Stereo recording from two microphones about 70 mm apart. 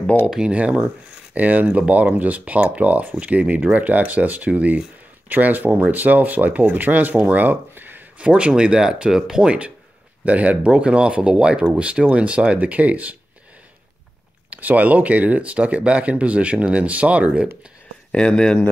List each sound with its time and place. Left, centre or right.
0.4 s speech: centre
8.3 s speech: centre
14.5 s speech: right
18.1 s speech: centre